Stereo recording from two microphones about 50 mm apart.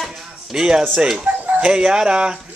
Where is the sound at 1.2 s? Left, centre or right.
Right.